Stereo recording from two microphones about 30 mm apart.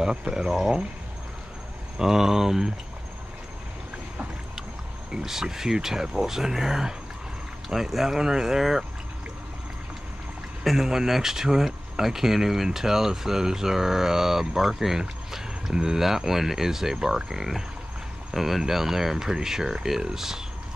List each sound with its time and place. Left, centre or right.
0.0 s speech: right
2.0 s speech: centre
5.1 s speech: centre
10.6 s speech: centre